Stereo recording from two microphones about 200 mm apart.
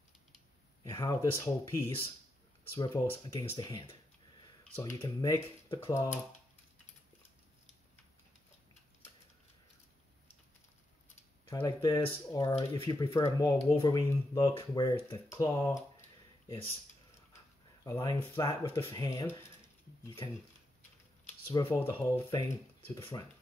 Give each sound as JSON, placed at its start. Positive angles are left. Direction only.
{"t": 0.8, "sound": "speech", "side_deg": 20}
{"t": 11.4, "sound": "speech", "side_deg": 20}
{"t": 17.8, "sound": "speech", "side_deg": 20}
{"t": 21.5, "sound": "speech", "side_deg": 15}